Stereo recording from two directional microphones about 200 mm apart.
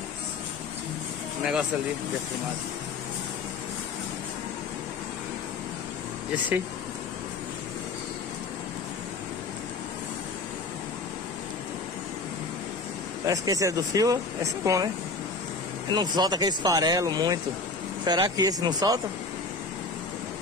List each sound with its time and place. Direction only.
13.2 s speech: 15° right (ahead or behind)
15.9 s speech: 20° right (ahead or behind)